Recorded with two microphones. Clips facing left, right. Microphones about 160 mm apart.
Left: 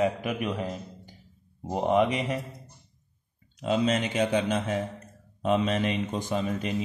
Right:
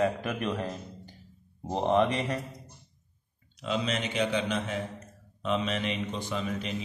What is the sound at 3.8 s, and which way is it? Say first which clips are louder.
A man's voice: left 4 dB; 45° left (ahead or behind).